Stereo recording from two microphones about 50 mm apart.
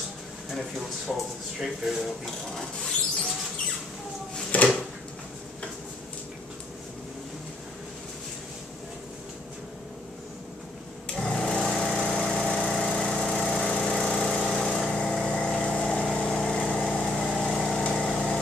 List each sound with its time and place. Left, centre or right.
0.6 s speech: centre
2.2 s speech: centre
4.5 s drawer open or close: left
11.1 s lawn mower: centre
15.0 s vehicle: centre